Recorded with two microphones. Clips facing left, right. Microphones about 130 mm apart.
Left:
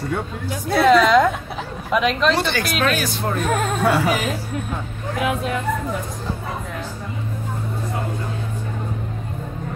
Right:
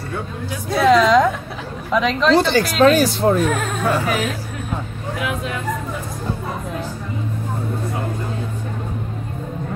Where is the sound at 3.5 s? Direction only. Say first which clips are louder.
Left 1 dB; 35° left (ahead or behind).